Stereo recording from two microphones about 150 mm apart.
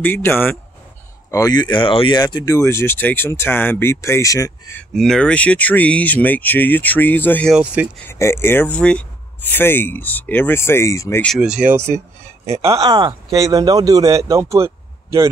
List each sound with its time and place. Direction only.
0.0 s speech: 15° left (ahead or behind)
1.3 s speech: 25° left (ahead or behind)
4.9 s speech: 5° left (ahead or behind)
7.5 s speech: 10° right (ahead or behind)
8.1 s speech: 15° left (ahead or behind)
11.2 s speech: 5° right (ahead or behind)
11.7 s speech: 15° right (ahead or behind)
12.7 s speech: 35° right (ahead or behind); by 15.2 s 20° right (ahead or behind)